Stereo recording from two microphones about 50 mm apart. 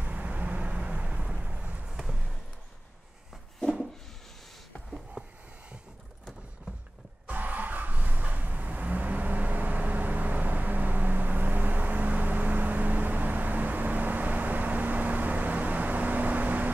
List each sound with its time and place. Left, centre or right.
0.0 s vehicle: right
1.9 s basketball bounce: centre
5.2 s a sound: right
7.2 s vehicle: right